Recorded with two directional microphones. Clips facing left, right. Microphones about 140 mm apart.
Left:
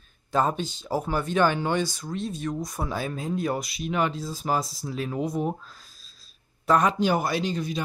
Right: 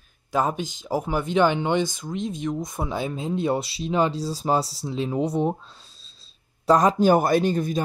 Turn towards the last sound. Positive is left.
turn(degrees=-50)  # may be behind; listen again after turning